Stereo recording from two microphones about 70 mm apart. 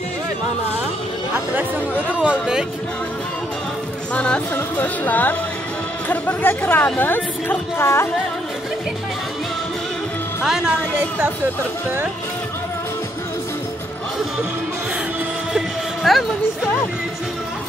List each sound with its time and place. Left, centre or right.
1.3 s speech: right
2.2 s speech: centre
4.1 s speech: centre; by 8.1 s left
10.4 s speech: centre
15.5 s music: centre